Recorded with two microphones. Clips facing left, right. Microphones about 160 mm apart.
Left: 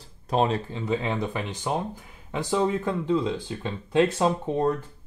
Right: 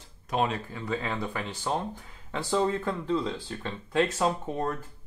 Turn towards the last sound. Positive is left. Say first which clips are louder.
# left 5 dB
turn(degrees=25)  # may be behind; listen again after turning